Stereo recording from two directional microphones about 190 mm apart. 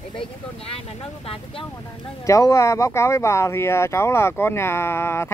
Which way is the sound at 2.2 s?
15° left (ahead or behind).